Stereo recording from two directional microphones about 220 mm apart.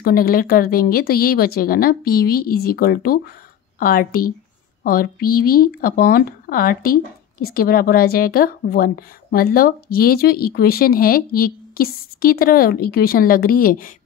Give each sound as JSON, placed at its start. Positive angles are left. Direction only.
{"t": 0.0, "sound": "speech", "side_deg": 45}